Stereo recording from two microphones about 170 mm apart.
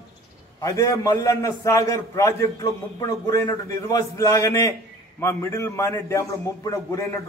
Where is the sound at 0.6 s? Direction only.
20° left (ahead or behind).